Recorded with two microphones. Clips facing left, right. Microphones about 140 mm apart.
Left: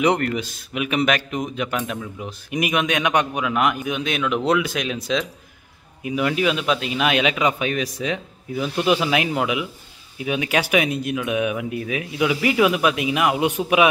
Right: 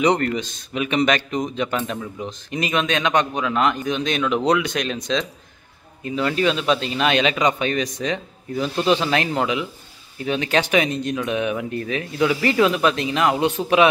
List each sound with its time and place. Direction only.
0.0 s a man's voice: 5° left (ahead or behind)